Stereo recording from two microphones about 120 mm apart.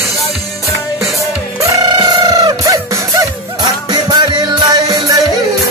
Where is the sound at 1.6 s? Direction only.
35° right (ahead or behind).